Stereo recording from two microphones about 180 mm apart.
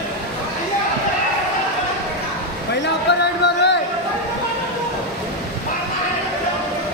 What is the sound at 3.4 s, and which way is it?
Boat, 70° left (ahead or behind).